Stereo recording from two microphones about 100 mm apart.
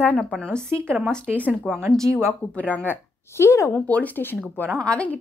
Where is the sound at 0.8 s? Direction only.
20° right (ahead or behind).